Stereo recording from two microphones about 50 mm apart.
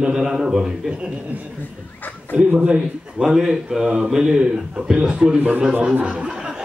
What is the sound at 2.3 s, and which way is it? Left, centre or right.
Speech, right.